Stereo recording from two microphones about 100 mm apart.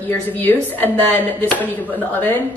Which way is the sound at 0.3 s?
20° left (ahead or behind).